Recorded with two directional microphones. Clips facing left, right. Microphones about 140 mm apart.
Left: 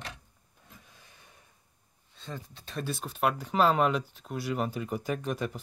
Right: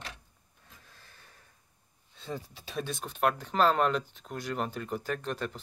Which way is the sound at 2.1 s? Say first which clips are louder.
Right 3 dB; 5° right (ahead or behind).